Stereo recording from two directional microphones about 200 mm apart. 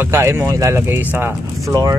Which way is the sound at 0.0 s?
15° right (ahead or behind).